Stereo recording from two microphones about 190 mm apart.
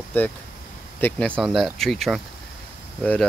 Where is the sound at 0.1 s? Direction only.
10° left (ahead or behind).